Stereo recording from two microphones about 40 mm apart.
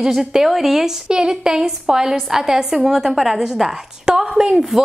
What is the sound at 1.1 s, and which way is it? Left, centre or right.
A woman's voice, centre.